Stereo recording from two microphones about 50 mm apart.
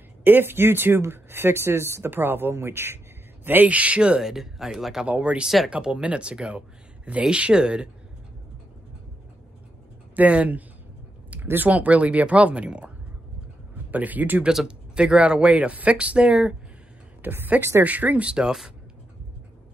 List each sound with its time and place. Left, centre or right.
0.2 s speech: right
2.0 s speech: right
3.6 s speech: right
4.2 s speech: centre
5.0 s speech: right
10.1 s speech: right
11.4 s speech: right
11.7 s speech: right
13.9 s speech: right
15.0 s speech: centre
17.2 s a woman's voice: right
17.8 s speech: right